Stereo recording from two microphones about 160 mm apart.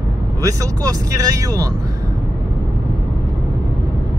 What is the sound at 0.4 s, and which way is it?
Speech, 20° right (ahead or behind).